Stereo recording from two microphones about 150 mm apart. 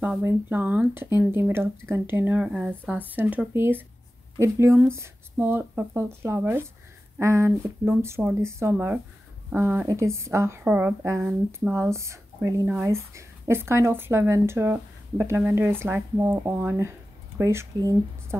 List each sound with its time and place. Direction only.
0.2 s speech: 15° right (ahead or behind)